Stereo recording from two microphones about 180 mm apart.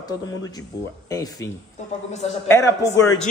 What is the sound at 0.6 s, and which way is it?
A man's voice, 20° left (ahead or behind).